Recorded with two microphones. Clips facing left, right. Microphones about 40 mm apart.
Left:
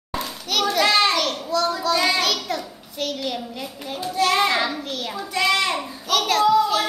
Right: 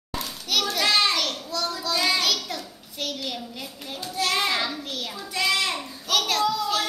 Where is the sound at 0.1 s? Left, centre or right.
Centre.